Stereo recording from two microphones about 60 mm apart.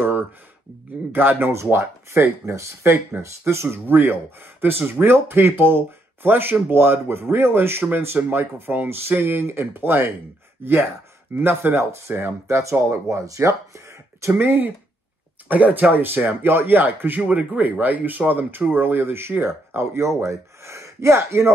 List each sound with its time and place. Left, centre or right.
1.1 s speech: right
1.5 s speech: right
3.6 s speech: right
12.9 s speech: right
14.4 s speech: right
17.2 s speech: right
20.2 s speech: right